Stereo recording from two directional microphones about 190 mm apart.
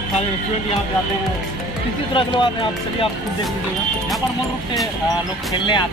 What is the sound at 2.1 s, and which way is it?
Speech, 25° left (ahead or behind).